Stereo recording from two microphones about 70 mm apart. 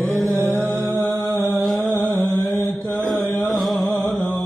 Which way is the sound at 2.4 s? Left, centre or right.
Left.